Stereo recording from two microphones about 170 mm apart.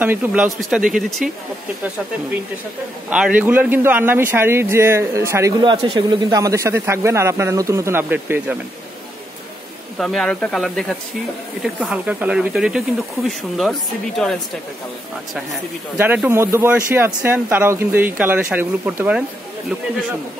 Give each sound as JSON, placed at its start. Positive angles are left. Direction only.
{"t": 0.0, "sound": "speech", "side_deg": -10}
{"t": 3.1, "sound": "speech", "side_deg": -10}
{"t": 5.6, "sound": "speech", "side_deg": -25}
{"t": 9.9, "sound": "speech", "side_deg": 0}
{"t": 16.0, "sound": "speech", "side_deg": -10}